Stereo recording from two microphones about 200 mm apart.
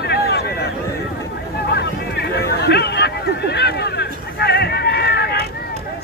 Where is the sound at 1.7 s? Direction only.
55° left (ahead or behind).